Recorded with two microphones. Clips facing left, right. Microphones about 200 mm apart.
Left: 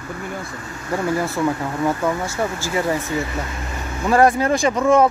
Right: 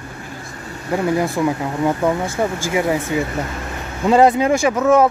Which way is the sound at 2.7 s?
10° right (ahead or behind).